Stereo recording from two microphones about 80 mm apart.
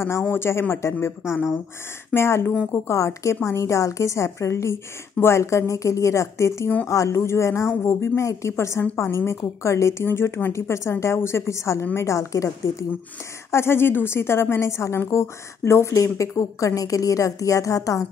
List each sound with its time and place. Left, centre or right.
0.0 s a woman's voice: left
2.1 s a woman's voice: left
13.5 s a woman's voice: left